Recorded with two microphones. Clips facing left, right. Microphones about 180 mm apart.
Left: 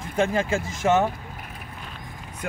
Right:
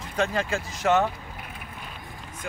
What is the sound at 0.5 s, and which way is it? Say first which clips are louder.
Speech: left 4 dB; 50° left (ahead or behind).